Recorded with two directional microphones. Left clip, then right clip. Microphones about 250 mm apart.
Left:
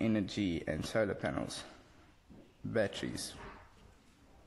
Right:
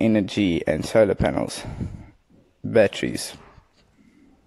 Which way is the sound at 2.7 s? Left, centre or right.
Right.